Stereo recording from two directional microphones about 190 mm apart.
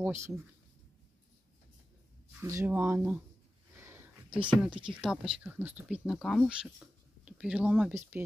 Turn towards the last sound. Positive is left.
turn(degrees=-5)  # may be behind; listen again after turning